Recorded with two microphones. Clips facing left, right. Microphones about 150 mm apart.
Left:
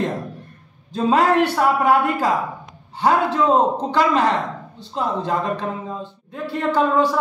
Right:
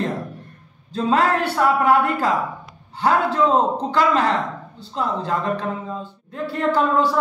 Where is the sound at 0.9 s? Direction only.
15° left (ahead or behind).